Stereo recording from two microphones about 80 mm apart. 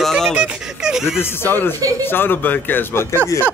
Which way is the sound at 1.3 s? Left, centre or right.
Left.